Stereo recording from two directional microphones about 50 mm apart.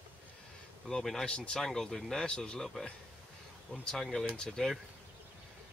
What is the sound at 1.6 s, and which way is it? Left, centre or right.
Speech, centre.